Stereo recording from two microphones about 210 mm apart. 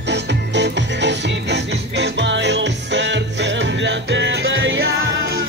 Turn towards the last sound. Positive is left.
turn(degrees=-65)  # may be behind; listen again after turning